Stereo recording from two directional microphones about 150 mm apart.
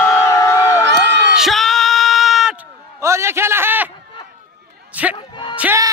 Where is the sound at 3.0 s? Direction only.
20° right (ahead or behind).